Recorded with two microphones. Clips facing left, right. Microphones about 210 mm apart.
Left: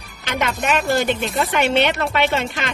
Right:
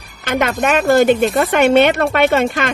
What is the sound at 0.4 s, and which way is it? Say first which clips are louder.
Speech: right 5 dB; 50° right (ahead or behind).